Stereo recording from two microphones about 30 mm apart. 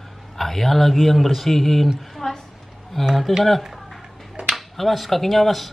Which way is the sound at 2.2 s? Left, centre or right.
Left.